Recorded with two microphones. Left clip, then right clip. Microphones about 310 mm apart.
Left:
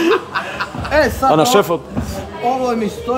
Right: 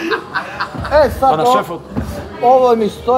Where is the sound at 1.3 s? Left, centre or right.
Left.